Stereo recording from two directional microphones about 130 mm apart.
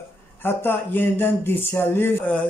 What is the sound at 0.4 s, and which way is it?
Speech, 15° left (ahead or behind).